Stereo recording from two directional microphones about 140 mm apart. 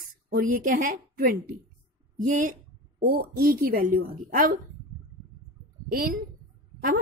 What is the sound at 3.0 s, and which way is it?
A woman's voice, 90° right.